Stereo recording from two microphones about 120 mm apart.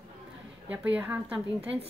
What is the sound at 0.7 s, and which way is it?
Speech, 10° right (ahead or behind).